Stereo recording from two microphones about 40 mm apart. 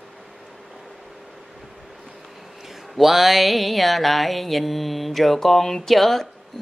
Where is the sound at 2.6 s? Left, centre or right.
Centre.